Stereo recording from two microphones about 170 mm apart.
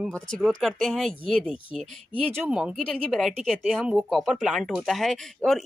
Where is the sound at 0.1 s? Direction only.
5° left (ahead or behind).